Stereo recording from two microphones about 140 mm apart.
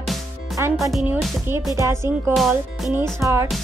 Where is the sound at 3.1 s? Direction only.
20° right (ahead or behind).